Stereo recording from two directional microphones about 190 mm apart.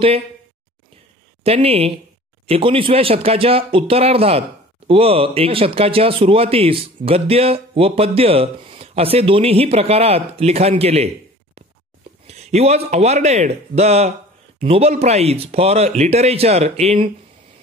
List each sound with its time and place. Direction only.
1.4 s speech: 30° right (ahead or behind)
12.3 s speech: 35° right (ahead or behind)